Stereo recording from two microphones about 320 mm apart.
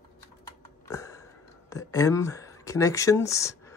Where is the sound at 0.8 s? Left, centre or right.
Centre.